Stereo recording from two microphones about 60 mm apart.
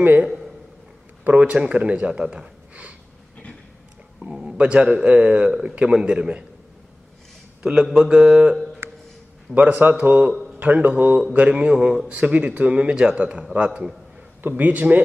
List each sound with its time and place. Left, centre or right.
0.2 s a man's voice: centre
1.2 s speech: right
4.2 s a man's voice: centre
7.6 s a man's voice: centre
8.8 s a sound: right
9.5 s a man's voice: right
10.3 s a sound: centre
10.6 s a man's voice: right